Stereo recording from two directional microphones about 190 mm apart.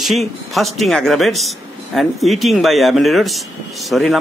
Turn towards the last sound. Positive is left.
turn(degrees=0)  # may be behind; listen again after turning